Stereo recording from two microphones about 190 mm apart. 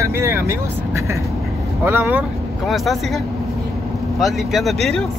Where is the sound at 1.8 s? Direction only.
10° right (ahead or behind).